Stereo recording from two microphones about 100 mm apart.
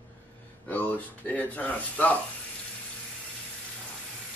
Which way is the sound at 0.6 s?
15° left (ahead or behind).